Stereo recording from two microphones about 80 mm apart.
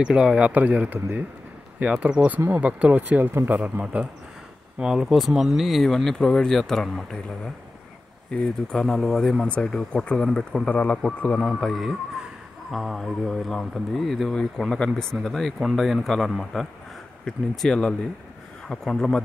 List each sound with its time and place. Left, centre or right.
0.1 s speech: centre
1.8 s a man's voice: centre
10.7 s speech: centre
11.4 s a man's voice: centre